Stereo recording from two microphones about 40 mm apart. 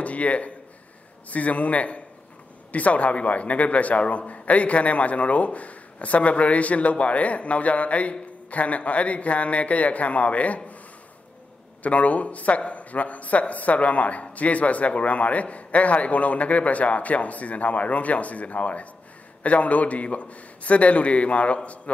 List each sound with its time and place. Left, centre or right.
0.0 s a sound: left
1.3 s speech: left
11.8 s speech: left